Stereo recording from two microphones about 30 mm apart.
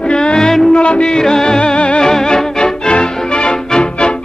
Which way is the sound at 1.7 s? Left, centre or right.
Left.